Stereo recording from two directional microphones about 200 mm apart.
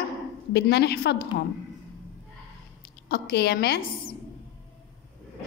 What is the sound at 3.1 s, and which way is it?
A woman's voice, 50° left (ahead or behind).